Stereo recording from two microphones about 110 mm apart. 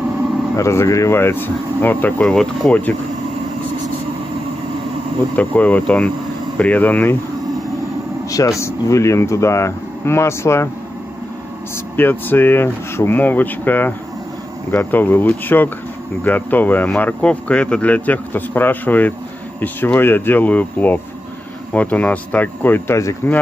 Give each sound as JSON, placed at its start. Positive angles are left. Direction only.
{"t": 0.6, "sound": "speech", "side_deg": 25}
{"t": 5.3, "sound": "speech", "side_deg": 15}
{"t": 8.3, "sound": "speech", "side_deg": 30}
{"t": 12.0, "sound": "speech", "side_deg": 20}